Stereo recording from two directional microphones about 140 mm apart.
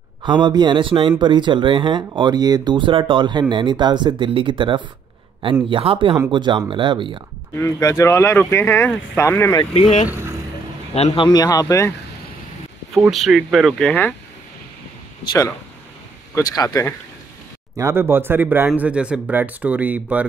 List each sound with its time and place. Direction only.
0.2 s speech: 35° right (ahead or behind)
7.6 s speech: 20° left (ahead or behind)
10.0 s speech: 15° right (ahead or behind)
11.0 s a man's voice: 50° left (ahead or behind)
11.2 s speech: 25° left (ahead or behind)
13.1 s speech: centre (ahead or behind)
15.2 s speech: 25° left (ahead or behind)
17.7 s speech: 20° right (ahead or behind)